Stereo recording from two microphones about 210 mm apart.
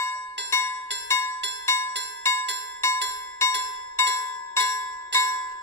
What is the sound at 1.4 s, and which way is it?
Music, 55° right (ahead or behind).